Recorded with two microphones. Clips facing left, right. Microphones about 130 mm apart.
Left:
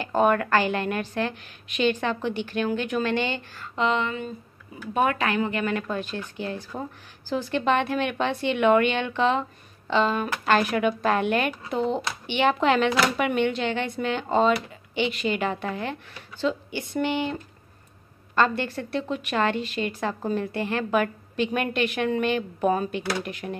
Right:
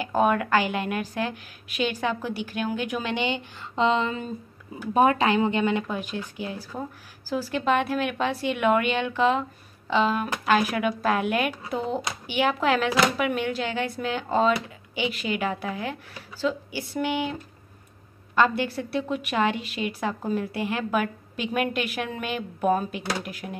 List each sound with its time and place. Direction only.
0.0 s a woman's voice: 5° right (ahead or behind)
3.7 s a woman's voice: 30° right (ahead or behind); by 23.5 s 5° right (ahead or behind)